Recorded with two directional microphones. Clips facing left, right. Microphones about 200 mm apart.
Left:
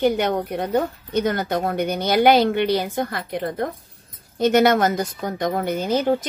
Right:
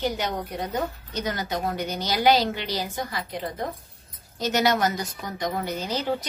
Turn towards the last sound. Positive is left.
turn(degrees=50)  # may be behind; listen again after turning